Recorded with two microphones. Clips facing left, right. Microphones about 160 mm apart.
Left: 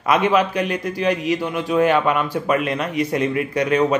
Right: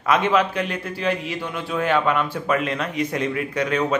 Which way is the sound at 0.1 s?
10° left (ahead or behind).